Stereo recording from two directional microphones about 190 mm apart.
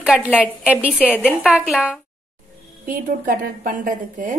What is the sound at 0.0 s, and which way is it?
A woman's voice, 5° right (ahead or behind).